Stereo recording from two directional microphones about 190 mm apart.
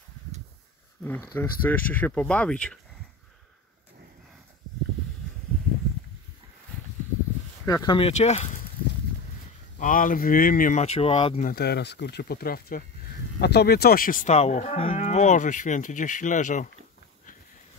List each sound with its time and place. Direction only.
1.0 s speech: 10° left (ahead or behind)
7.6 s speech: 20° left (ahead or behind)
8.1 s moo: 35° left (ahead or behind)
9.8 s speech: 45° left (ahead or behind); by 11.4 s 30° left (ahead or behind)
11.4 s speech: 55° left (ahead or behind)
13.4 s moo: 60° left (ahead or behind); by 16.6 s 40° left (ahead or behind)